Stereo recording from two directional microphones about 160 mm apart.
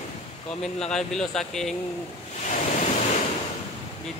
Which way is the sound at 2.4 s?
45° left (ahead or behind).